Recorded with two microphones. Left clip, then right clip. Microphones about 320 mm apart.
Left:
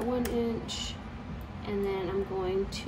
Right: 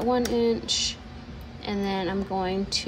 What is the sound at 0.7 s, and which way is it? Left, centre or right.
Speech, right.